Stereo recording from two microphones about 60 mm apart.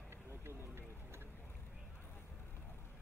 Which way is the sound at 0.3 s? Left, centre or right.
Right.